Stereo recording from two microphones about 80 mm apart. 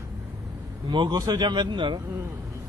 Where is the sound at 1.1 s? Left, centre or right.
Right.